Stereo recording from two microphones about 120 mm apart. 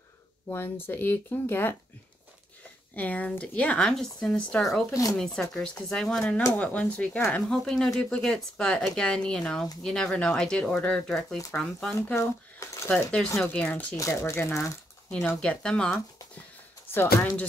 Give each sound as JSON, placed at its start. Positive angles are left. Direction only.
{"t": 0.5, "sound": "speech", "side_deg": 20}
{"t": 3.0, "sound": "speech", "side_deg": 15}
{"t": 12.1, "sound": "a sound", "side_deg": 20}
{"t": 13.4, "sound": "speech", "side_deg": 10}
{"t": 13.9, "sound": "speech", "side_deg": 25}
{"t": 15.0, "sound": "speech", "side_deg": 10}
{"t": 16.9, "sound": "speech", "side_deg": 20}